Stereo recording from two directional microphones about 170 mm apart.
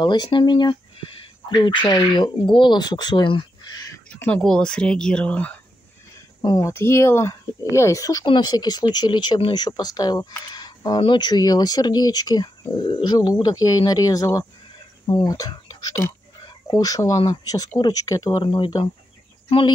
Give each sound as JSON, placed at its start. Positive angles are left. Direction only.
{"t": 0.0, "sound": "speech", "side_deg": 25}
{"t": 4.1, "sound": "speech", "side_deg": 10}
{"t": 6.4, "sound": "speech", "side_deg": 25}
{"t": 6.7, "sound": "speech", "side_deg": 15}